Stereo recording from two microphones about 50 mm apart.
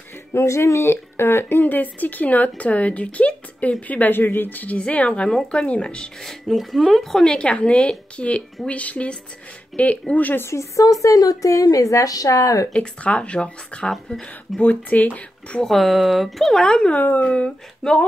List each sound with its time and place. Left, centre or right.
0.3 s speech: left
6.2 s speech: centre
7.2 s speech: centre
10.5 s a woman's voice: left
12.7 s speech: left
13.8 s speech: centre
14.6 s speech: left
15.6 s speech: centre
17.2 s speech: left
17.8 s speech: centre